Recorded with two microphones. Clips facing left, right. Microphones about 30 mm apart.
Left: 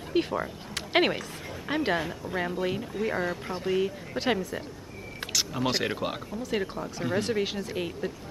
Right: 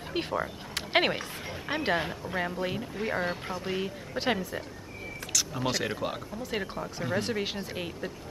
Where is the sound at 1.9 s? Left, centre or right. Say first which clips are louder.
Even; centre.